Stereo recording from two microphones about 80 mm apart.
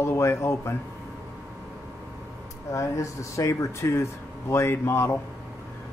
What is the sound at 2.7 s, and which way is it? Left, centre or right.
Speech, left.